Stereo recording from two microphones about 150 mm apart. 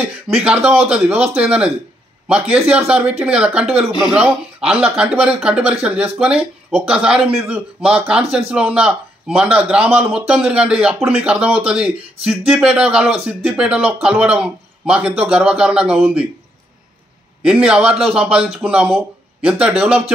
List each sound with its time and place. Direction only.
0.3 s a man's voice: 5° right (ahead or behind)
3.6 s speech: 40° right (ahead or behind)
4.0 s a man's voice: 5° right (ahead or behind)
17.5 s a man's voice: 5° right (ahead or behind)